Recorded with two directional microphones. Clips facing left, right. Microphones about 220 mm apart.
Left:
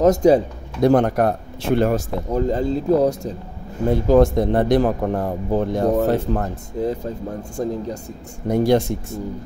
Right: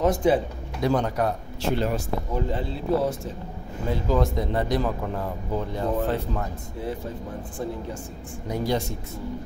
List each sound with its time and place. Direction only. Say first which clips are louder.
0.0 s speech: left 7 dB; 40° left (ahead or behind)
0.8 s speech: left 8 dB; 55° left (ahead or behind)
8.5 s speech: left 9 dB; 55° left (ahead or behind)